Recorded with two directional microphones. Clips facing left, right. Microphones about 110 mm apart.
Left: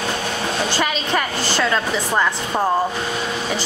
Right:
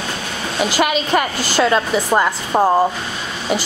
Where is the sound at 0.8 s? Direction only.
15° right (ahead or behind).